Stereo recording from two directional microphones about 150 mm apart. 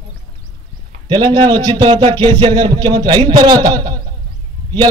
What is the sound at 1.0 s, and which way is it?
A man's voice, 30° right (ahead or behind).